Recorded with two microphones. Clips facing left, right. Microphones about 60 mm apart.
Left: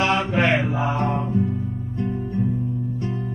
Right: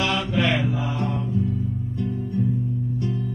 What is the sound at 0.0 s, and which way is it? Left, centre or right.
Music, left.